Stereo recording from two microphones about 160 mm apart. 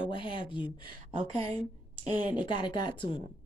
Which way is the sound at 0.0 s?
30° left (ahead or behind).